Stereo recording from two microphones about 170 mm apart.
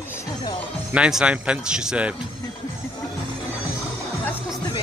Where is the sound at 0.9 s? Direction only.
5° right (ahead or behind).